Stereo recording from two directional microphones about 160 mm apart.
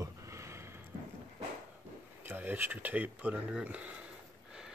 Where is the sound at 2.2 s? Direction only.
10° right (ahead or behind).